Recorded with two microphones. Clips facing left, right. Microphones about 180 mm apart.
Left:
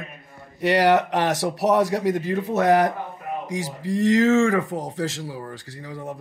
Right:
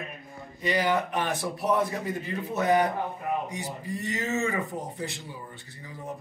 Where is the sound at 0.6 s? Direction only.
75° left (ahead or behind).